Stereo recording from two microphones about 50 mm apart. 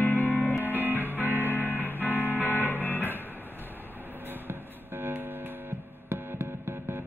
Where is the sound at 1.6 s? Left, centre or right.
Left.